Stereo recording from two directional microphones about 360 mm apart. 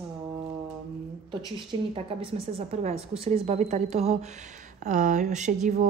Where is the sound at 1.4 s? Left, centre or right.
Centre.